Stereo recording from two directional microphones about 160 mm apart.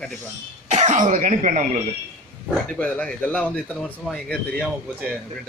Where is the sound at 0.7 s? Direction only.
50° right (ahead or behind).